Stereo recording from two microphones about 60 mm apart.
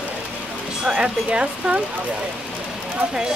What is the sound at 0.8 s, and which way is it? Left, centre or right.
Speech, centre.